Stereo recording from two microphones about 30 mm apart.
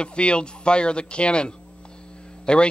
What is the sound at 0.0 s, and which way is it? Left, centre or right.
Speech, left.